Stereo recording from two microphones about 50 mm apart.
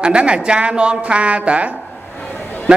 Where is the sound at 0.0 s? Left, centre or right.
Centre.